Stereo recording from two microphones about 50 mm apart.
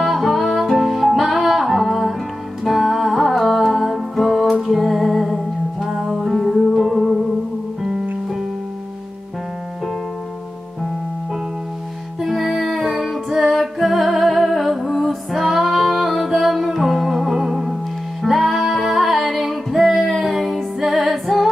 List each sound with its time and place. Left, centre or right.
0.0 s music: centre
12.2 s music: centre